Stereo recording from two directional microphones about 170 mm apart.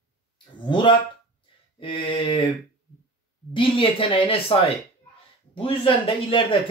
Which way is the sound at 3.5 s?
30° left (ahead or behind).